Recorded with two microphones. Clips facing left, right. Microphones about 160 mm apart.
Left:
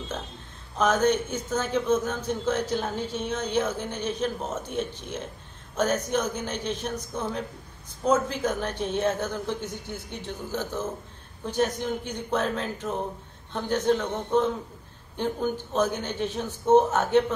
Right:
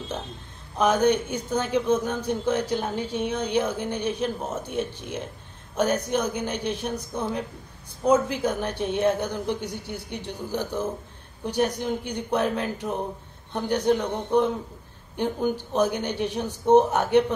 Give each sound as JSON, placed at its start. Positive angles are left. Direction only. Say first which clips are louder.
{"t": 0.7, "sound": "a man's voice", "louder": "right 2 dB", "side_deg": -10}